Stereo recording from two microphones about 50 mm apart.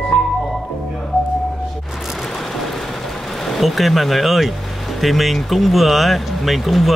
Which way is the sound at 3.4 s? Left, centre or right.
Centre.